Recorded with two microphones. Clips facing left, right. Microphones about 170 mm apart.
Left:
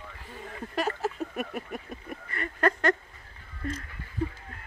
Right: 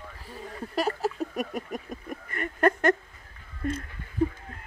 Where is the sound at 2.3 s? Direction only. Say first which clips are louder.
Right 3 dB; 50° right (ahead or behind).